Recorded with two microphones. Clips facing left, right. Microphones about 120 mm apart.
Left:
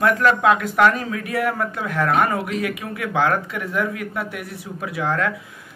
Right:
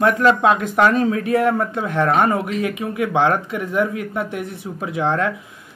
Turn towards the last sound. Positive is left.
turn(degrees=-25)  # may be behind; listen again after turning